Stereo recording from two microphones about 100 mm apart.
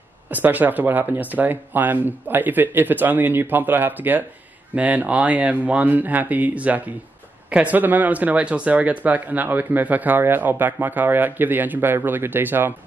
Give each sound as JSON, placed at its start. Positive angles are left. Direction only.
{"t": 0.3, "sound": "speech", "side_deg": -15}